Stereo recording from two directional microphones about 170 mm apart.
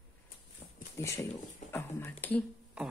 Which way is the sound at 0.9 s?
20° left (ahead or behind).